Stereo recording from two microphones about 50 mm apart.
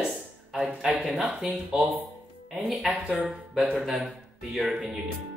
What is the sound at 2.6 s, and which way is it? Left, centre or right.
Speech, centre.